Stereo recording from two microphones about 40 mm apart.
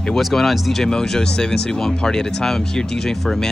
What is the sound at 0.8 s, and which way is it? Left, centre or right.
Speech, centre.